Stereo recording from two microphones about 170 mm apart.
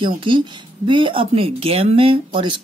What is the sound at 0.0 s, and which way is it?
Speech, 30° right (ahead or behind).